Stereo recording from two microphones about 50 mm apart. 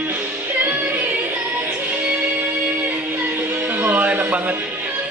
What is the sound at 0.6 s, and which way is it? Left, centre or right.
Music, right.